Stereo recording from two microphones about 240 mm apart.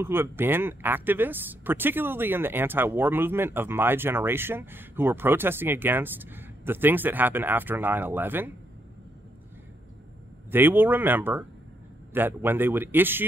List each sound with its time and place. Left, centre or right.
0.0 s speech: centre
10.5 s speech: centre